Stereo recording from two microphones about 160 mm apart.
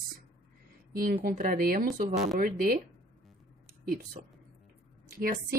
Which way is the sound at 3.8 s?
65° right (ahead or behind).